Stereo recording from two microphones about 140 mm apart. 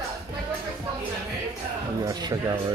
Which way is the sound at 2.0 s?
25° right (ahead or behind).